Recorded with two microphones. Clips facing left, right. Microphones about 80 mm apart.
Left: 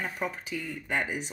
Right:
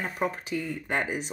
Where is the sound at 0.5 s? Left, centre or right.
Right.